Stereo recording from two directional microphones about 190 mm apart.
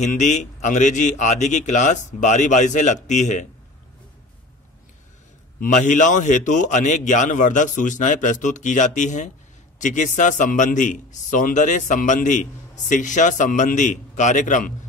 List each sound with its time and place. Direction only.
0.0 s a man's voice: 40° left (ahead or behind)
5.6 s a man's voice: 40° left (ahead or behind)